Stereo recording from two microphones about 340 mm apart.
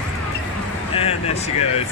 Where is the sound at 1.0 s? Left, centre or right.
Centre.